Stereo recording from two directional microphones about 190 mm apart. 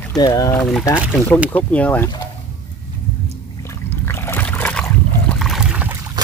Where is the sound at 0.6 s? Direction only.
Centre (ahead or behind).